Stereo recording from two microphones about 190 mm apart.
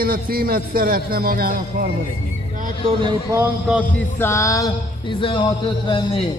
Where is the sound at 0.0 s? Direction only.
50° right (ahead or behind).